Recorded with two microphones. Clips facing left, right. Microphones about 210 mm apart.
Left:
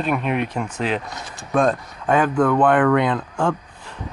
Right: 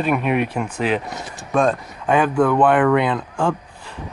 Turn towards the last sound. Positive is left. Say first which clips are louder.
# even
turn(degrees=-5)  # may be behind; listen again after turning